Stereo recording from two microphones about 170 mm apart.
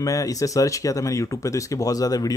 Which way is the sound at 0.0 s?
20° left (ahead or behind).